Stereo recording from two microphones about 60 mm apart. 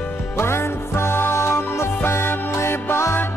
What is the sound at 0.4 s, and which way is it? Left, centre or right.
Music, left.